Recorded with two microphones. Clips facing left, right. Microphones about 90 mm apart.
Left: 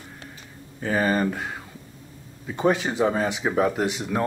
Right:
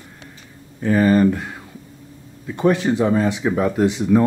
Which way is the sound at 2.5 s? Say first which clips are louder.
Right 5 dB; 20° left (ahead or behind).